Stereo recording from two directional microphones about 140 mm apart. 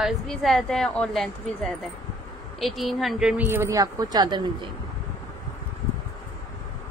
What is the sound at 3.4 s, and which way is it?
A woman's voice, 20° right (ahead or behind).